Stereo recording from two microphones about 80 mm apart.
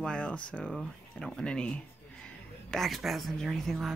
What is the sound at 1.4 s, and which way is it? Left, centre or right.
Speech, centre.